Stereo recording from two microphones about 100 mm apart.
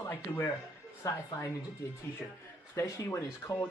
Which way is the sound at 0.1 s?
20° left (ahead or behind).